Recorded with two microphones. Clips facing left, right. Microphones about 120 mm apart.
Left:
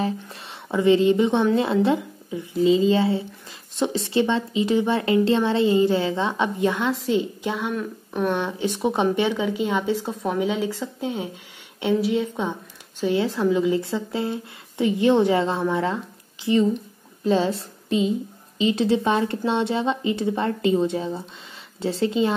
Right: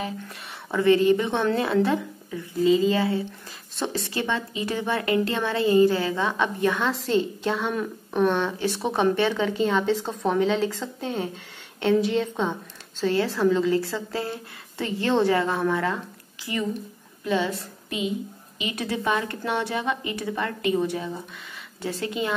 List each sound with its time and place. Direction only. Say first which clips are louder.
0.7 s speech: left 1 dB; 20° left (ahead or behind); by 8.4 s centre (ahead or behind)
8.4 s a woman's voice: left 1 dB; 15° left (ahead or behind)